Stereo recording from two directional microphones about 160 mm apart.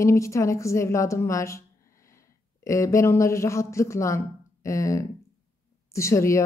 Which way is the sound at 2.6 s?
20° left (ahead or behind).